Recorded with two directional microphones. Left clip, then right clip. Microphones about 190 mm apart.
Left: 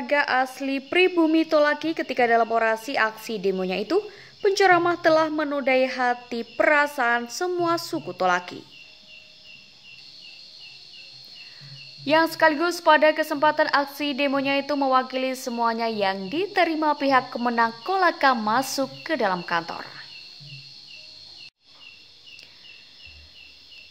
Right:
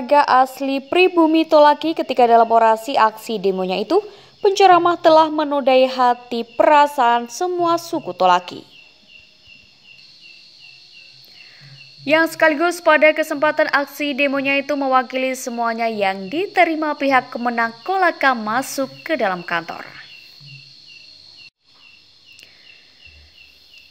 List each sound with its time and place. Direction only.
0.0 s a woman's voice: 20° right (ahead or behind)
12.0 s a woman's voice: 10° right (ahead or behind)